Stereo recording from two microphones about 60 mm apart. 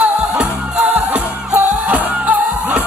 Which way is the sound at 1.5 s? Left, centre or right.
Right.